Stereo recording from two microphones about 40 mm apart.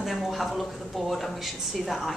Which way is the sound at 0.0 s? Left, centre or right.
Centre.